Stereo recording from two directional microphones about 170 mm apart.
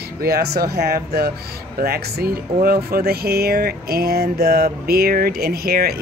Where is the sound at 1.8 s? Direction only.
65° right (ahead or behind).